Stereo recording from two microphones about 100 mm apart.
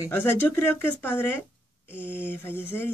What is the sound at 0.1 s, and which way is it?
Speech, 20° left (ahead or behind).